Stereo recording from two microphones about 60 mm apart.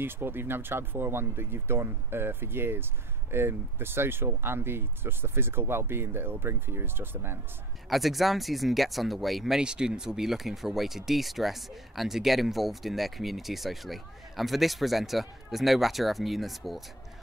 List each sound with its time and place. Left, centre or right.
0.0 s speech: right
7.9 s speech: centre
9.6 s speech: centre